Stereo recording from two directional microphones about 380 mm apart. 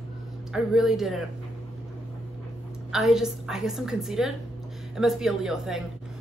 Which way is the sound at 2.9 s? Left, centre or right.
Centre.